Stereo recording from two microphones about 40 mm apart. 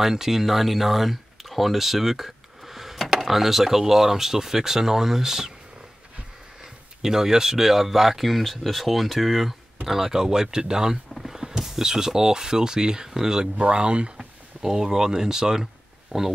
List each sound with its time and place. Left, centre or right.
0.0 s speech: centre
6.6 s speech: centre
14.1 s a sound: centre